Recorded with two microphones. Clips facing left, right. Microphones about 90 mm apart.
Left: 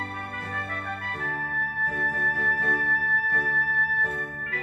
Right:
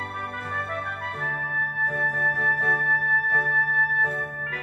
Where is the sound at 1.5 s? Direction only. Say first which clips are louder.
Right 2 dB; 25° right (ahead or behind).